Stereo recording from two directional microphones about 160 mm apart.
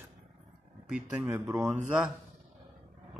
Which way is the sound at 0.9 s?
10° right (ahead or behind).